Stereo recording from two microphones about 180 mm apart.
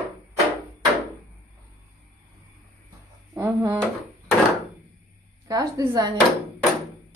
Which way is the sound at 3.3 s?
15° right (ahead or behind).